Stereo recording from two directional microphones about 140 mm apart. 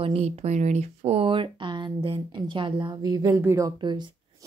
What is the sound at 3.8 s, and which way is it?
Speech, 35° right (ahead or behind).